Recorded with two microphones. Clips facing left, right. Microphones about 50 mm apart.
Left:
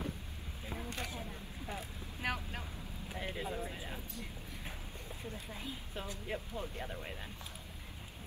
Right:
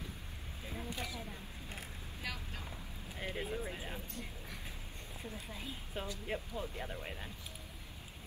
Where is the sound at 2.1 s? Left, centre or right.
Left.